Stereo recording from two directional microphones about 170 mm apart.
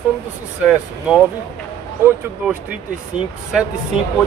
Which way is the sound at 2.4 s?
5° right (ahead or behind).